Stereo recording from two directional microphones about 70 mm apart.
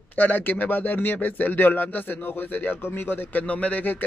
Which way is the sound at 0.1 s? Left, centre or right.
Left.